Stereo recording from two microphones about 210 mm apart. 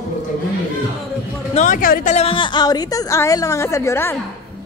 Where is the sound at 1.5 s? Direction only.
40° left (ahead or behind).